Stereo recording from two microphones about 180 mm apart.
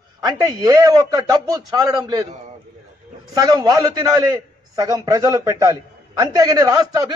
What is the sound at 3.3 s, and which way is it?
A man's voice, 20° right (ahead or behind).